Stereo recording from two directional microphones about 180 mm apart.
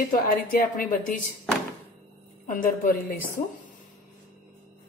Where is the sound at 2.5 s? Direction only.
50° left (ahead or behind).